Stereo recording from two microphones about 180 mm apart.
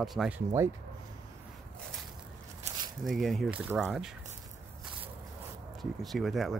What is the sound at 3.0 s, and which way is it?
Speech, centre (ahead or behind).